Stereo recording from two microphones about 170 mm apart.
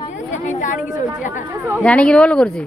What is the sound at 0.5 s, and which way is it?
Speech, 45° left (ahead or behind).